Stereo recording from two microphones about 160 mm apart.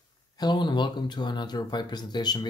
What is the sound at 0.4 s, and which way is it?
Speech, 25° left (ahead or behind).